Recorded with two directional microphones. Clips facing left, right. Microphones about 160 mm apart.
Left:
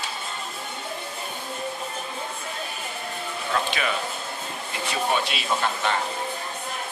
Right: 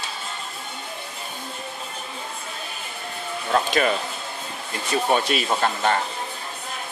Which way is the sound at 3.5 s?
40° right (ahead or behind).